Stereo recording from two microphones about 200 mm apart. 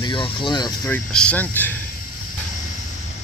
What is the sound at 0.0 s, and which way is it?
Speech, 25° left (ahead or behind).